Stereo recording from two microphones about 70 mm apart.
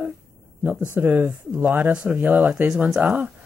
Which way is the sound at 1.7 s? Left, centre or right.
Centre.